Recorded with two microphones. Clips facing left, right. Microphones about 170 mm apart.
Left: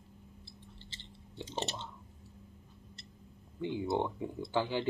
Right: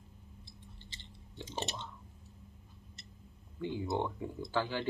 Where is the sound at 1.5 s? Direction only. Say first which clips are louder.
Left 2 dB; 15° right (ahead or behind).